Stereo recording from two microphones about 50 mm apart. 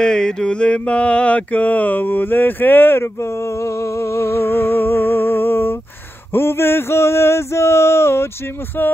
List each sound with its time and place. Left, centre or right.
0.0 s mantra: centre; by 5.8 s left
6.3 s male singing: left
8.8 s mantra: left